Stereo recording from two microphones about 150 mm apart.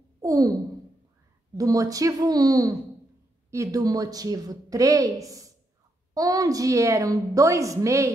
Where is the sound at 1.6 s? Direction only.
25° right (ahead or behind).